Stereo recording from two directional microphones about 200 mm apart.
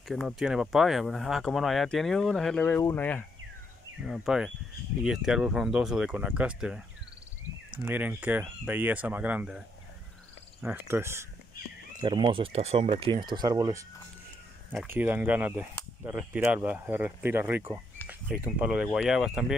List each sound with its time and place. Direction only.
0.1 s speech: centre (ahead or behind)
10.6 s speech: 10° right (ahead or behind)
12.0 s speech: 25° right (ahead or behind); by 19.5 s 5° right (ahead or behind)